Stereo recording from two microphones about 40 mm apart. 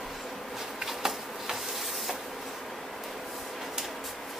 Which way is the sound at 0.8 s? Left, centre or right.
Centre.